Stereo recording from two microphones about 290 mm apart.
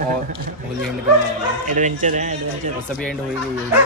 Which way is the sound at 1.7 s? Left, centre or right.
Right.